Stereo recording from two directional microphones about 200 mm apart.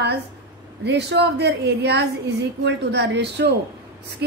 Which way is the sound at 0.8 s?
55° right (ahead or behind).